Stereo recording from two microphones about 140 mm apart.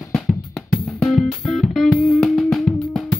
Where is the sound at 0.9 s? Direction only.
Centre (ahead or behind).